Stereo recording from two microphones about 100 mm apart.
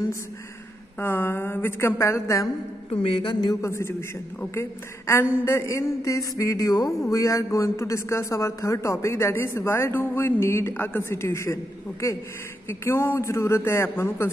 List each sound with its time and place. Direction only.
0.9 s speech: 20° left (ahead or behind)
2.9 s speech: 65° left (ahead or behind); by 3.5 s 50° left (ahead or behind)
3.6 s speech: 25° left (ahead or behind)